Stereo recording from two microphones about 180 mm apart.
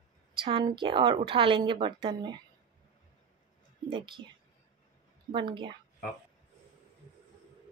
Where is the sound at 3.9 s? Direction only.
25° right (ahead or behind).